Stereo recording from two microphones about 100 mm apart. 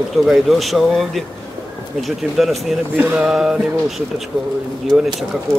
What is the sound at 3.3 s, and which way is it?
Speech, 5° right (ahead or behind).